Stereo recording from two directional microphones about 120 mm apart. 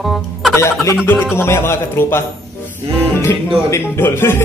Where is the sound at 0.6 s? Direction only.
25° left (ahead or behind).